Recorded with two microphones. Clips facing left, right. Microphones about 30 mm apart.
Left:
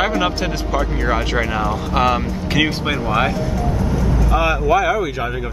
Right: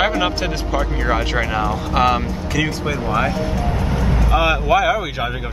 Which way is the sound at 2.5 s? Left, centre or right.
Left.